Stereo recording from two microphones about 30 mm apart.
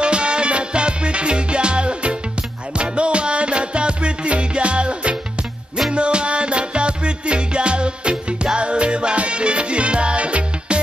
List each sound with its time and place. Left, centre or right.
0.0 s music: right